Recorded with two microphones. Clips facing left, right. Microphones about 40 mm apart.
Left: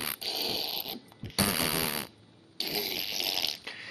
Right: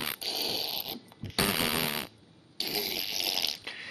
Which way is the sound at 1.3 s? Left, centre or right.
Right.